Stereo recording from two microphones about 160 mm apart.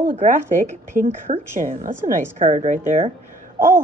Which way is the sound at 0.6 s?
50° right (ahead or behind).